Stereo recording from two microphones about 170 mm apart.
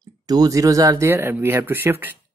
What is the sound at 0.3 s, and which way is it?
Speech, 20° right (ahead or behind).